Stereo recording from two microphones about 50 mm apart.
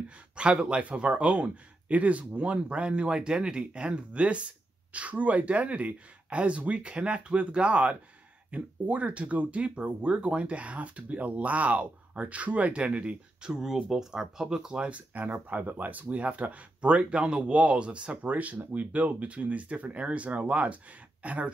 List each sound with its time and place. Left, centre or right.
0.4 s a man's voice: centre
15.0 s a man's voice: right